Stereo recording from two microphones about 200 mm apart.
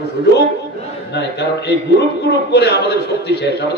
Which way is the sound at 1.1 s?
55° left (ahead or behind).